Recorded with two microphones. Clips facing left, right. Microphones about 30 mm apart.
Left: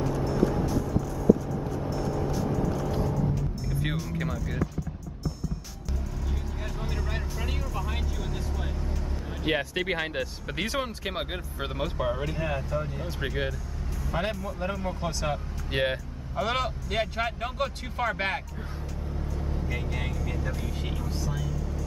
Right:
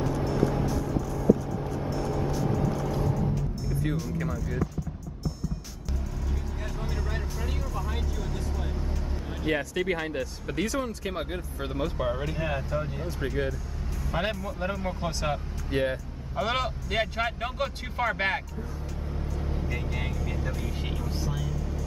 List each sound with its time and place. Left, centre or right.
0.0 s music: centre
1.9 s vehicle: centre
3.9 s music: centre
6.8 s music: centre
9.5 s speech: left
11.8 s speech: centre
14.1 s speech: centre
15.7 s speech: left
16.3 s speech: centre
19.4 s vehicle: centre
19.7 s vehicle: centre